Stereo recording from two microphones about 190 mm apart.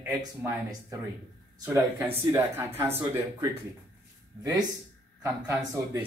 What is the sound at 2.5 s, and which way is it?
A woman's voice, 10° right (ahead or behind).